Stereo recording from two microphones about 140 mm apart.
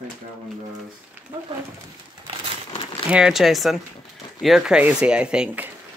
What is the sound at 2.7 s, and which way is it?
Crumpling, 40° left (ahead or behind).